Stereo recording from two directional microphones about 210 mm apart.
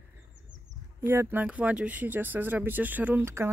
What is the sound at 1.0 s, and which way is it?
Speech, 10° right (ahead or behind).